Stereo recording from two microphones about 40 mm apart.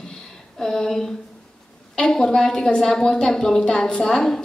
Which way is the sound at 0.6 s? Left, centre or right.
Centre.